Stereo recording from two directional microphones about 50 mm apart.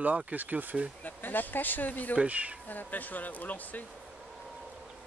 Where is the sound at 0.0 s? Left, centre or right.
Right.